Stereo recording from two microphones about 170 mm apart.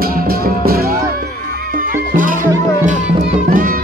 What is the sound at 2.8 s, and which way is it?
Music, 40° right (ahead or behind).